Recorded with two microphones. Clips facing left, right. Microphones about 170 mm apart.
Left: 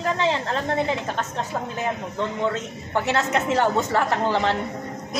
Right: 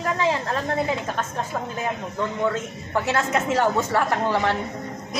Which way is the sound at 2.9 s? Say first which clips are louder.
Even; 20° left (ahead or behind).